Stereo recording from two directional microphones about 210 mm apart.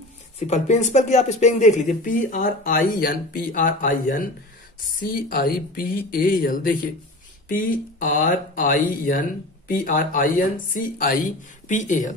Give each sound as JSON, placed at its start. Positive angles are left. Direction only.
{"t": 0.5, "sound": "speech", "side_deg": 35}